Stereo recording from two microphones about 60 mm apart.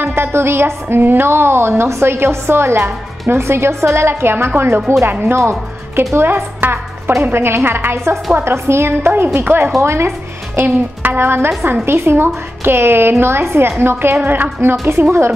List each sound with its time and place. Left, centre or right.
0.0 s a woman's voice: right
14.9 s a woman's voice: right